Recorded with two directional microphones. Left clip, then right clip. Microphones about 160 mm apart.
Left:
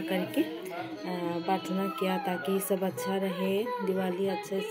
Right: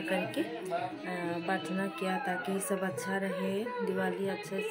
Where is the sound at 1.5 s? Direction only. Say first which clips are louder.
Left 5 dB; 20° left (ahead or behind).